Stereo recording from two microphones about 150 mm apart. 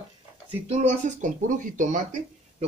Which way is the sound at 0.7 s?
50° right (ahead or behind).